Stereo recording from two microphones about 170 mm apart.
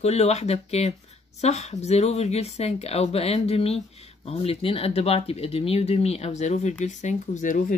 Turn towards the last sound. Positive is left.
turn(degrees=50)  # may be behind; listen again after turning